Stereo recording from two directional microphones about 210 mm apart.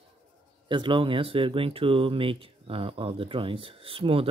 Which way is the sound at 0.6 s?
25° right (ahead or behind).